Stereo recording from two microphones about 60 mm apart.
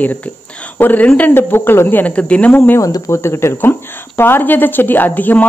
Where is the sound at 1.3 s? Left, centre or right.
Left.